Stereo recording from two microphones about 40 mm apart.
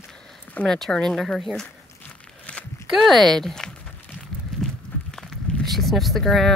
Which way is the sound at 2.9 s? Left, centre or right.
Centre.